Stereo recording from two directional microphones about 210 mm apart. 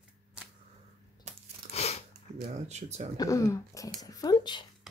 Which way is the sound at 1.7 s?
30° left (ahead or behind).